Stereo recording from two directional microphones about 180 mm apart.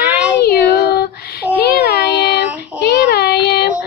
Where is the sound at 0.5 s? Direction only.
65° left (ahead or behind).